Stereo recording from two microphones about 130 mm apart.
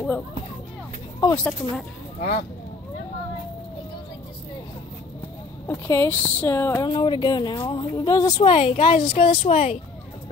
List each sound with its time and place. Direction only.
1.3 s speech: 5° left (ahead or behind)
5.7 s speech: 20° left (ahead or behind)
6.9 s speech: 35° left (ahead or behind); by 9.8 s 50° left (ahead or behind)